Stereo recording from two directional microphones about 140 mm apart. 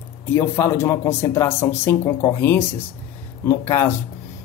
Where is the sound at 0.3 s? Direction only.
20° left (ahead or behind).